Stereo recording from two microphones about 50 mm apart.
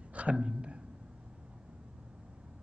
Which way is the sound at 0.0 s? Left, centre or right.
Right.